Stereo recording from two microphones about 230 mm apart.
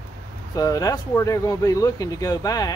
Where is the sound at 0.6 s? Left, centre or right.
Centre.